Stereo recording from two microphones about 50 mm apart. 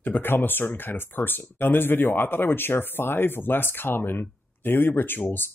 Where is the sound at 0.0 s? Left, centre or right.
Left.